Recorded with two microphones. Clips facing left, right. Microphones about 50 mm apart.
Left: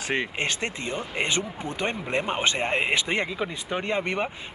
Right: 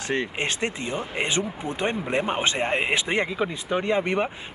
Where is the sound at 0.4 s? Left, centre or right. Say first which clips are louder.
Right 1 dB; centre.